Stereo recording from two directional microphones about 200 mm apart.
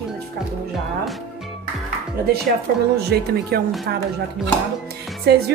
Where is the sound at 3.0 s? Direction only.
55° right (ahead or behind).